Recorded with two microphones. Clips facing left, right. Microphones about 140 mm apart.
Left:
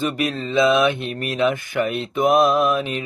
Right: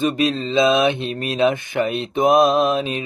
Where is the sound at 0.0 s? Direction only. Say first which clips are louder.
Right 4 dB; 25° right (ahead or behind).